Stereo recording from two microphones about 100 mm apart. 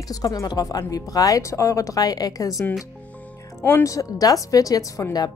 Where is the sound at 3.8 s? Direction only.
35° left (ahead or behind).